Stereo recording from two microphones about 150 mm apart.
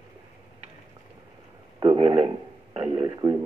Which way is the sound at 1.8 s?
35° right (ahead or behind).